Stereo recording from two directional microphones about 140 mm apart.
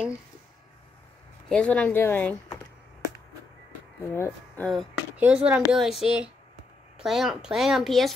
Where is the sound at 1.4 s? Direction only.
5° left (ahead or behind).